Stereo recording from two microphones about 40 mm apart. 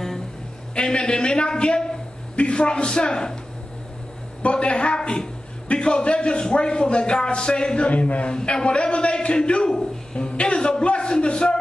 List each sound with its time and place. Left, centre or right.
0.7 s a man's voice: left
4.4 s a man's voice: left